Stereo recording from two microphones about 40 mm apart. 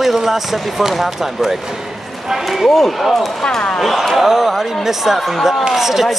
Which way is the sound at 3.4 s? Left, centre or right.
Centre.